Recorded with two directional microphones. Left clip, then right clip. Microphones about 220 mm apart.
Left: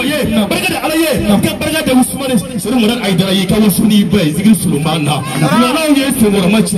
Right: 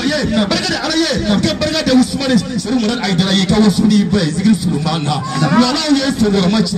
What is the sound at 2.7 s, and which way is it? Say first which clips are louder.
A man's voice: left 4 dB; 15° left (ahead or behind).